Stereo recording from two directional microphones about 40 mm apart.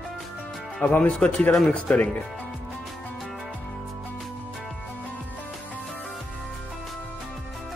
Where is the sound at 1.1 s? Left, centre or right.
Centre.